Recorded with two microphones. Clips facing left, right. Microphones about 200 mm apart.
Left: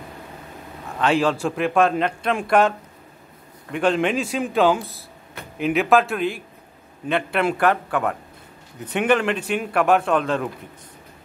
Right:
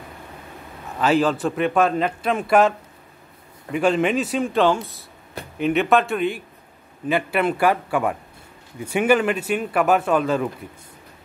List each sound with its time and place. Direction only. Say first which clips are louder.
0.9 s a man's voice: right 1 dB; centre (ahead or behind)
3.7 s a man's voice: right 1 dB; 5° right (ahead or behind)